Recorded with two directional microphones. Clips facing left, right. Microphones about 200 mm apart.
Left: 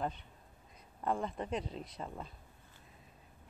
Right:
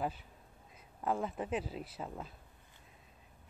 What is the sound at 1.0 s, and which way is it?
Speech, 5° right (ahead or behind).